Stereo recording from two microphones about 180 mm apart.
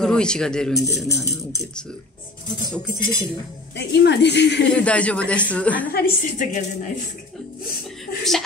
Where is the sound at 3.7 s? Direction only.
70° left (ahead or behind).